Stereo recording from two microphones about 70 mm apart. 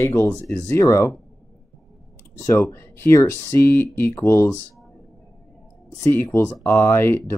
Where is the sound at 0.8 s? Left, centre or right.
Left.